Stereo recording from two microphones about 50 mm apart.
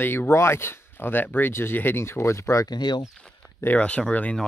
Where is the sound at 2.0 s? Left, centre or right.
Left.